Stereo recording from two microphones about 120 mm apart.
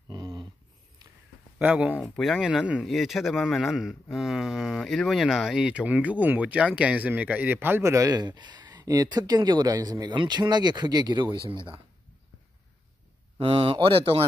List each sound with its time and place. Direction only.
0.1 s dog: 35° right (ahead or behind)
1.6 s speech: 15° right (ahead or behind)
2.0 s speech: centre (ahead or behind); by 11.8 s 45° right (ahead or behind)
13.4 s speech: 50° right (ahead or behind)